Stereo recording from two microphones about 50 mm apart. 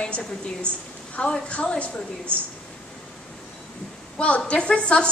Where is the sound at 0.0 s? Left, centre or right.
Centre.